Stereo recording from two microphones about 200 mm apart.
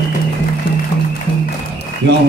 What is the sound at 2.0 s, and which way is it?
Speech, 60° right (ahead or behind).